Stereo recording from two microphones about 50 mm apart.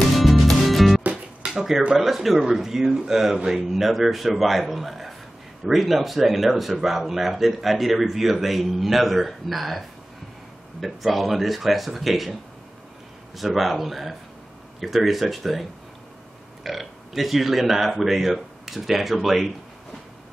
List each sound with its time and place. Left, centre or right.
0.1 s music: centre
2.0 s speech: centre
13.4 s speech: centre
16.6 s speech: centre